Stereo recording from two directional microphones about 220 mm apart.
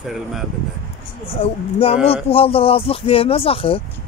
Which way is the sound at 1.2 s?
25° left (ahead or behind).